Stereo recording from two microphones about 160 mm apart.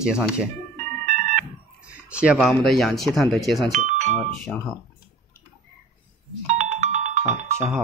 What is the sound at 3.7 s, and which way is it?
Doorbell, 50° right (ahead or behind).